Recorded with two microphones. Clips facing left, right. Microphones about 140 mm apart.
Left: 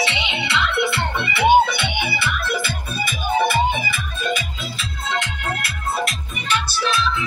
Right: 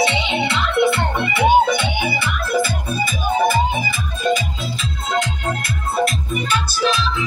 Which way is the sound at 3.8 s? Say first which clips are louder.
Right 4 dB; 35° right (ahead or behind).